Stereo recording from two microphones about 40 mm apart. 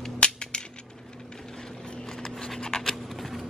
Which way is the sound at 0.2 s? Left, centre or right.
Left.